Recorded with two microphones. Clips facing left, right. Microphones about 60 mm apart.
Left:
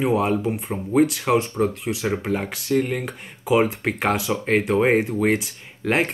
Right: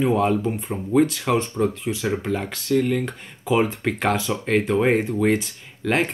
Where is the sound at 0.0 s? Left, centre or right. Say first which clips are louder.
Right 1 dB; centre.